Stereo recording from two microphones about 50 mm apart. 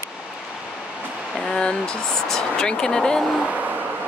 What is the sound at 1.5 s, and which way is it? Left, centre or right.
Speech, centre.